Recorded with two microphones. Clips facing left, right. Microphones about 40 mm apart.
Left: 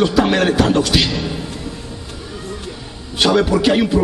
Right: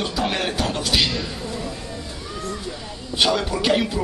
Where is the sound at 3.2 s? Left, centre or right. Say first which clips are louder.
Left 7 dB; left.